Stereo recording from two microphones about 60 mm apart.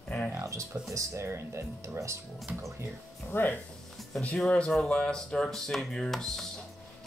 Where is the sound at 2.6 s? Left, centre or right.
Right.